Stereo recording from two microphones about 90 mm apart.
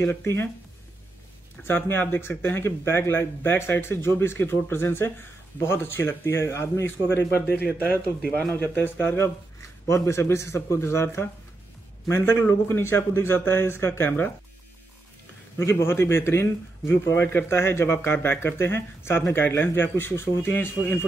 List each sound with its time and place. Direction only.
0.0 s a man's voice: 25° left (ahead or behind)
1.6 s a man's voice: 25° left (ahead or behind)
8.7 s a man's voice: 25° left (ahead or behind)
15.5 s a man's voice: 30° left (ahead or behind)